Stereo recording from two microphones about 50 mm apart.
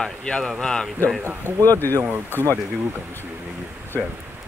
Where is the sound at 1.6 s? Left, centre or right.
Left.